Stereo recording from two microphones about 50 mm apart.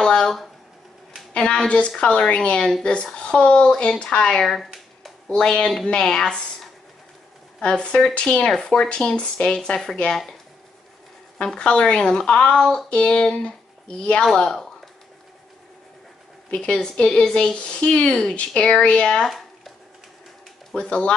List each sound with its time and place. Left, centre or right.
0.0 s a sound: centre
1.3 s a woman's voice: left
7.6 s speech: left
11.4 s speech: centre
13.5 s a sound: centre
14.3 s speech: centre
16.5 s speech: centre
19.2 s a sound: centre
20.7 s speech: left